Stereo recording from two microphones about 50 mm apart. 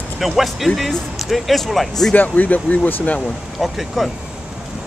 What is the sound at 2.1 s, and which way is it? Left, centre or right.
Speech, left.